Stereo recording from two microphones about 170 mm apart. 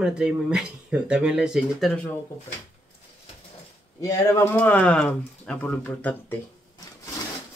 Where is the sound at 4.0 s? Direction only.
20° left (ahead or behind).